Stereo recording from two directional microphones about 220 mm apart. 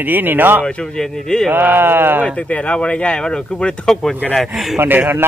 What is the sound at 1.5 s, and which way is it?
Speech, 10° right (ahead or behind).